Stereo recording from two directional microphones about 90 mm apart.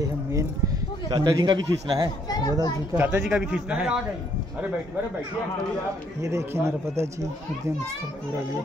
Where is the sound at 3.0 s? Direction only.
20° right (ahead or behind).